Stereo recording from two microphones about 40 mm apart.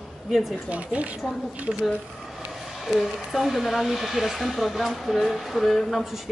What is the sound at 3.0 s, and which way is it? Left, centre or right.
Speech, centre.